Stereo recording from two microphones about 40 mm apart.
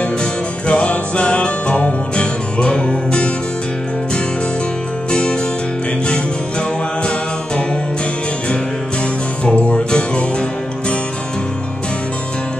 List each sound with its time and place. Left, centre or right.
0.2 s music: left
5.1 s music: left
9.4 s music: left